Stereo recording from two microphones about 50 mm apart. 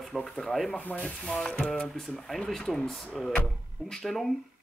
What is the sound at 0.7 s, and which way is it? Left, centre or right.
Speech, left.